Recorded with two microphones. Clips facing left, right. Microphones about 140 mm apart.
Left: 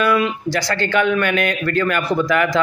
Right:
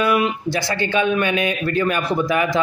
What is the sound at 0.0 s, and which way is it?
Speech, 20° right (ahead or behind).